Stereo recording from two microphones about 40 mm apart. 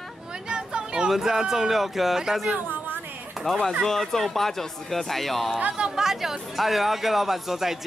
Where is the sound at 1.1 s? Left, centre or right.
Centre.